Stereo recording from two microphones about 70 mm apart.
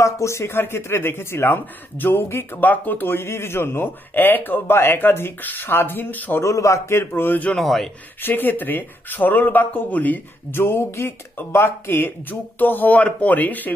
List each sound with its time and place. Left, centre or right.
0.0 s speech: left
6.4 s speech: left
7.5 s a man's voice: centre
8.2 s speech: left